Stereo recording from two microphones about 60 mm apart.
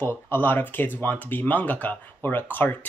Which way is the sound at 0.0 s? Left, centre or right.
Left.